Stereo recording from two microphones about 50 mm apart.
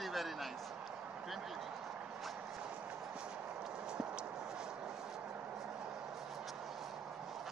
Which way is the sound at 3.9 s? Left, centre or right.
Centre.